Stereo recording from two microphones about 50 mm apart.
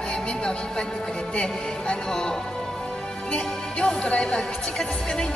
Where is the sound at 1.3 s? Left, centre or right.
Left.